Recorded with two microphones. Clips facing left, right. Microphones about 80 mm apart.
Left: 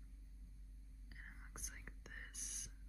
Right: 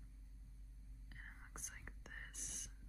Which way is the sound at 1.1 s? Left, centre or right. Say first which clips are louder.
Right 1 dB; centre.